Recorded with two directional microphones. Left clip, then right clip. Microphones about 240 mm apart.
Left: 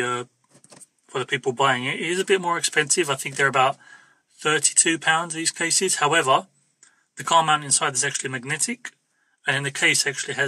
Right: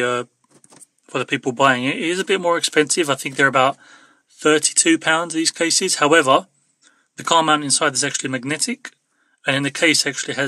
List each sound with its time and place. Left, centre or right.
0.0 s speech: right